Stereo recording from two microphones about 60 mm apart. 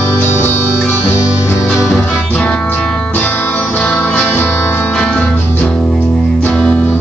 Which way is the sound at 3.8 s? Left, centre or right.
Left.